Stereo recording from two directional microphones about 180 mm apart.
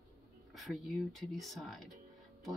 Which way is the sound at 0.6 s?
Centre (ahead or behind).